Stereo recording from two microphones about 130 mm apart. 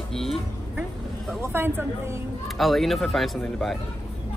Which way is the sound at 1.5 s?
15° right (ahead or behind).